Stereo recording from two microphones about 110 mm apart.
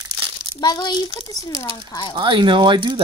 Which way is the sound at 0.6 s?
40° left (ahead or behind).